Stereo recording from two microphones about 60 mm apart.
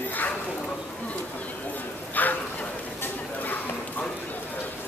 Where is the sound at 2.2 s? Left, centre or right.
Left.